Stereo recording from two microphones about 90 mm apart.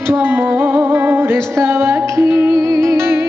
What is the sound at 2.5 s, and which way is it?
Music, 40° right (ahead or behind).